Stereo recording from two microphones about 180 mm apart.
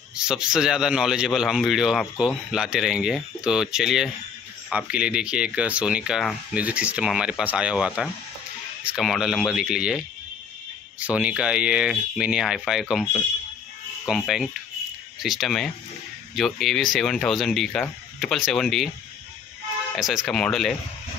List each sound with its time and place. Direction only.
0.1 s speech: 5° right (ahead or behind)
14.0 s speech: centre (ahead or behind)
20.0 s speech: centre (ahead or behind)